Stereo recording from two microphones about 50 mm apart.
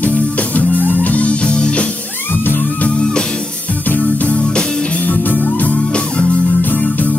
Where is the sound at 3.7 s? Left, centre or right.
Left.